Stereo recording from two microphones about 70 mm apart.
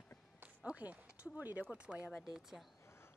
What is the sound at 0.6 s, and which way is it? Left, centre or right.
Speech, centre.